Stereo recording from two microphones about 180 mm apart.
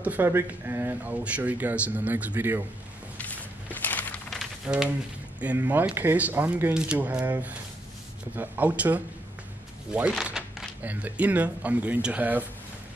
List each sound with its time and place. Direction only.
0.0 s speech: 10° right (ahead or behind)
3.8 s a sound: 10° left (ahead or behind)
5.4 s speech: 10° right (ahead or behind)